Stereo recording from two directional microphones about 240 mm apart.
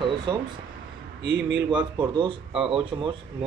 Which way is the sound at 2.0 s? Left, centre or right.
Centre.